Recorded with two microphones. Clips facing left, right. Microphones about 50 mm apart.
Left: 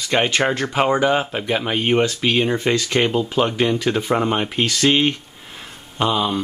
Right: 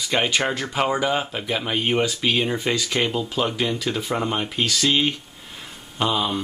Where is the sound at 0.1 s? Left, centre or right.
Centre.